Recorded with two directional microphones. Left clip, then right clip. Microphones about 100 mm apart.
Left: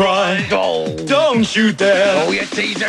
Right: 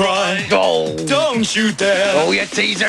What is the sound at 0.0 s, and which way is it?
Speech, 30° left (ahead or behind).